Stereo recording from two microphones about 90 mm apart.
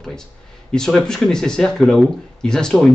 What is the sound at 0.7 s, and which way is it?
Speech, 10° left (ahead or behind).